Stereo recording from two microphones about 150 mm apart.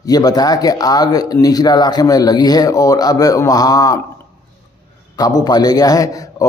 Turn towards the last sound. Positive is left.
turn(degrees=25)  # may be behind; listen again after turning